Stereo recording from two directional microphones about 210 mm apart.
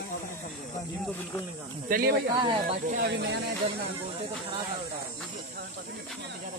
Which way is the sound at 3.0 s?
55° right (ahead or behind).